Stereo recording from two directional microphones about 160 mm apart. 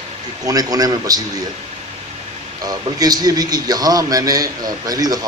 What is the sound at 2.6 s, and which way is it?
A man's voice, 25° right (ahead or behind).